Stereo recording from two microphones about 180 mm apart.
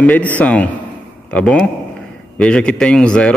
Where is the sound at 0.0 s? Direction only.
10° left (ahead or behind).